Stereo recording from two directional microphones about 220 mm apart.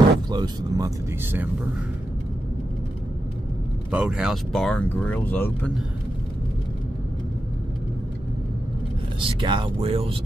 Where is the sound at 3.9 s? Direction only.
5° right (ahead or behind).